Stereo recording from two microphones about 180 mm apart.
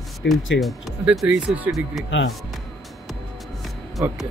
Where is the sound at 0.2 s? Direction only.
80° left.